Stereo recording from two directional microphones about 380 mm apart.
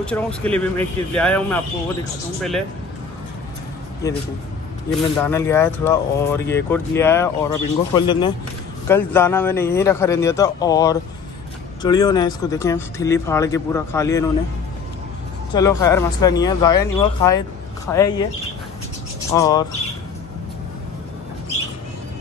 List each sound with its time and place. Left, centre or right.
0.0 s speech: centre
4.0 s speech: centre
15.5 s speech: centre
19.3 s speech: centre